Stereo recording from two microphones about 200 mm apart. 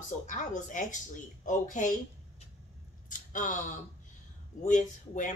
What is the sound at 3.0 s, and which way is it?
Speech, 40° left (ahead or behind).